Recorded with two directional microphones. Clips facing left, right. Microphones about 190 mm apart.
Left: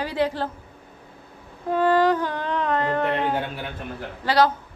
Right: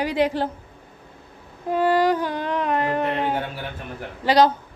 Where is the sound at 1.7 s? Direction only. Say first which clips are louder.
Even; 10° right (ahead or behind).